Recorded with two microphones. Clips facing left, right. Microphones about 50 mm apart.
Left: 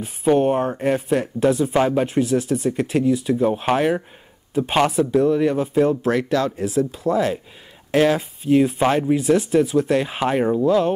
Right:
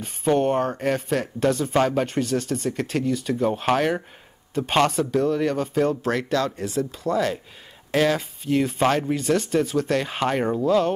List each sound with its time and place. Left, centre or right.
0.0 s speech: centre
8.5 s speech: centre